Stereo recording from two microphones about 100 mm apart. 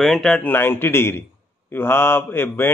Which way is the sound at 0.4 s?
20° left (ahead or behind).